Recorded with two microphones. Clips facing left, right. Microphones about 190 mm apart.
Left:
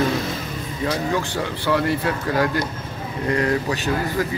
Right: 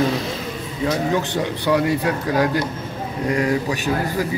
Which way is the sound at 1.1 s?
20° right (ahead or behind).